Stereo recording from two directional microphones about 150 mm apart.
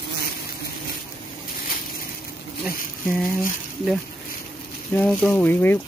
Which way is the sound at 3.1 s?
20° left (ahead or behind).